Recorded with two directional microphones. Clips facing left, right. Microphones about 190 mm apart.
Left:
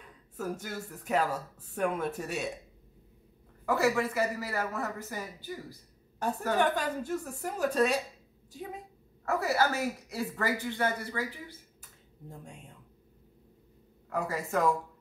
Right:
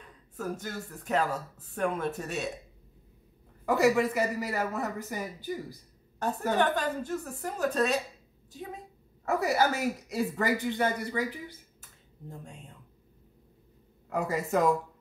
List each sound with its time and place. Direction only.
0.4 s a woman's voice: 10° left (ahead or behind)
3.6 s speech: 15° right (ahead or behind)
6.5 s a woman's voice: 10° left (ahead or behind)
9.2 s speech: 15° right (ahead or behind)
12.3 s speech: 10° left (ahead or behind)
14.0 s speech: 20° right (ahead or behind)